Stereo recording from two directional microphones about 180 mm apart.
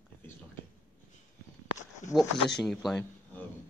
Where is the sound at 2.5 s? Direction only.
Centre (ahead or behind).